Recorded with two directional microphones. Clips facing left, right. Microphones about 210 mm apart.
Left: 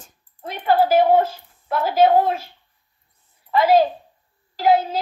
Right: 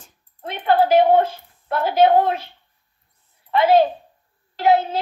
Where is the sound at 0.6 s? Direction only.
5° left (ahead or behind).